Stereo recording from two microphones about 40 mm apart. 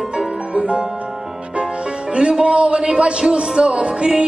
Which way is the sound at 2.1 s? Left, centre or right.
Right.